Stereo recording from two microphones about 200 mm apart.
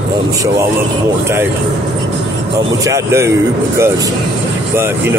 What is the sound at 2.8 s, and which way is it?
Speech, 15° right (ahead or behind).